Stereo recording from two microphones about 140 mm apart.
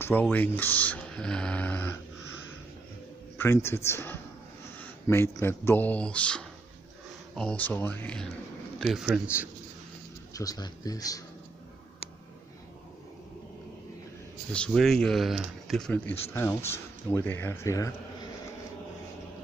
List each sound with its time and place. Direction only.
0.0 s speech: 15° left (ahead or behind)
3.3 s speech: 15° left (ahead or behind); by 9.5 s 5° right (ahead or behind)
10.3 s speech: 25° left (ahead or behind)
14.5 s speech: 5° left (ahead or behind)
15.9 s speech: 15° left (ahead or behind)